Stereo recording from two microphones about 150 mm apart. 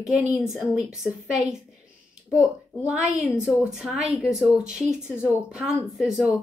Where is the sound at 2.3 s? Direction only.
10° right (ahead or behind).